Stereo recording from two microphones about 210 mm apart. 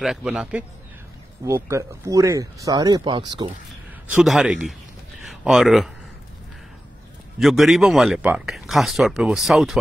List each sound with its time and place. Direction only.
0.0 s speech: 5° right (ahead or behind); by 3.5 s 20° right (ahead or behind)
4.1 s speech: 5° right (ahead or behind)
7.3 s speech: centre (ahead or behind)